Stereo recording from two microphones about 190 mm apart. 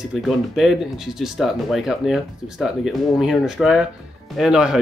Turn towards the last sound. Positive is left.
turn(degrees=-5)  # may be behind; listen again after turning